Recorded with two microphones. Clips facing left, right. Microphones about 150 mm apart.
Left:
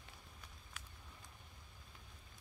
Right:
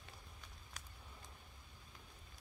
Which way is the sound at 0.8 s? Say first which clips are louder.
Even; 40° right (ahead or behind).